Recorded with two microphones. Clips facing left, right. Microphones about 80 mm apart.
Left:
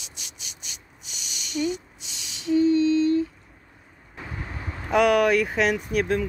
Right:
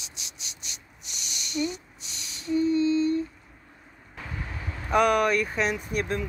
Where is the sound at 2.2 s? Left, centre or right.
Left.